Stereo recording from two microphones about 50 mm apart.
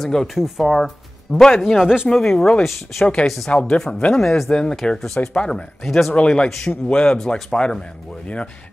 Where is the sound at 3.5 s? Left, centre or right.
Left.